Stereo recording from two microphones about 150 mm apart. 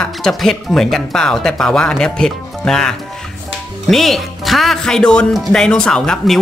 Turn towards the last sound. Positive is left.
turn(degrees=5)  # may be behind; listen again after turning